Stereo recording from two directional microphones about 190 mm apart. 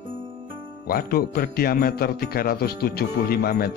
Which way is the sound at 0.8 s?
50° left (ahead or behind).